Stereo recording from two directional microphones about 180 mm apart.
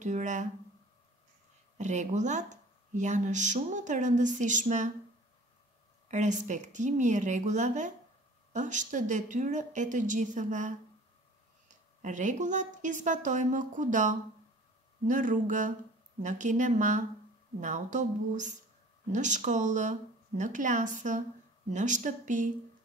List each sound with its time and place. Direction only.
0.0 s speech: 40° right (ahead or behind)
1.8 s speech: 40° right (ahead or behind)
6.0 s speech: 40° right (ahead or behind)
12.0 s speech: 45° right (ahead or behind)